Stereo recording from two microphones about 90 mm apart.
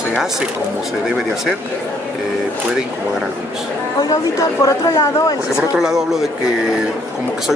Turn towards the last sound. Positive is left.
turn(degrees=-5)  # may be behind; listen again after turning